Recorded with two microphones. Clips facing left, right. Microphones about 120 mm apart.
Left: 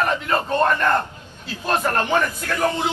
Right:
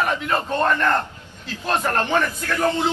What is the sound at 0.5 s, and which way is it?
Speech, 15° left (ahead or behind).